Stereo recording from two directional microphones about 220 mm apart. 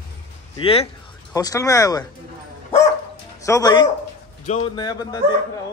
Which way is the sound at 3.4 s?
15° left (ahead or behind).